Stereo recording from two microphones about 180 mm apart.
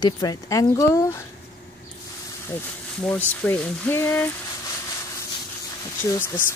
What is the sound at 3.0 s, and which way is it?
Speech, 10° left (ahead or behind).